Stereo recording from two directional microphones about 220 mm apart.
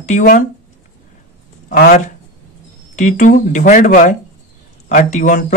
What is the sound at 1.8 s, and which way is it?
Speech, 35° left (ahead or behind).